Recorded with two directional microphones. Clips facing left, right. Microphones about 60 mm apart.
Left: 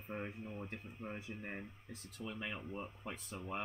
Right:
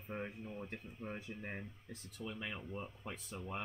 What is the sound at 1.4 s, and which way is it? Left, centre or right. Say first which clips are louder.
Speech: even; centre.